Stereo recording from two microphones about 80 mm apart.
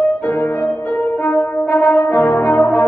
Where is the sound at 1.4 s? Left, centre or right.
Left.